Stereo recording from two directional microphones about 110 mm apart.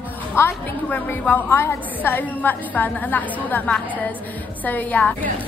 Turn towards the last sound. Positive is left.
turn(degrees=15)  # may be behind; listen again after turning